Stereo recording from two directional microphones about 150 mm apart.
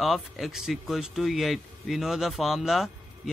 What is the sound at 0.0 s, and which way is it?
Speech, centre (ahead or behind).